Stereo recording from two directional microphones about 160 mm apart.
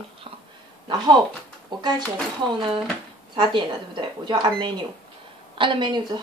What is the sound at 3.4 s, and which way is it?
A woman's voice, 30° right (ahead or behind).